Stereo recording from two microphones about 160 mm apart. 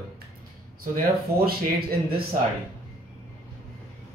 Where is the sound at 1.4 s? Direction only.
70° right (ahead or behind).